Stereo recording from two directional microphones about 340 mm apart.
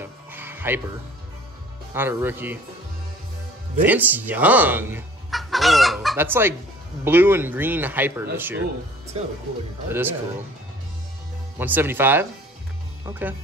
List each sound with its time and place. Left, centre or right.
0.0 s music: centre
2.0 s speech: centre
3.8 s fowl: centre
7.1 s speech: centre
9.1 s speech: centre
9.8 s speech: centre
11.5 s speech: centre